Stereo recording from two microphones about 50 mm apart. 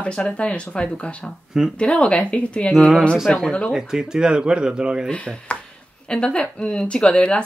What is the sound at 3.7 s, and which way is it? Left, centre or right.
Speech, centre.